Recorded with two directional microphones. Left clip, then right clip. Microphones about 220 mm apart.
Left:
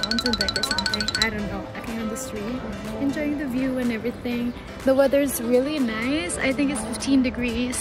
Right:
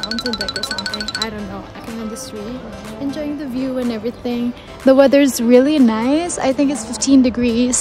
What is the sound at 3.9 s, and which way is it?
Speech, 25° right (ahead or behind).